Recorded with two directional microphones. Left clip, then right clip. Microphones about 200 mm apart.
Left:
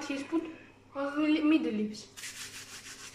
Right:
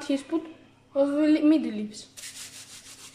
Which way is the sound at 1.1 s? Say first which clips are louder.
Right 3 dB; 20° right (ahead or behind).